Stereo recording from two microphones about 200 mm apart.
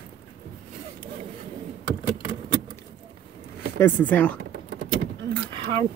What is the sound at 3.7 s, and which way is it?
Speech, 10° left (ahead or behind).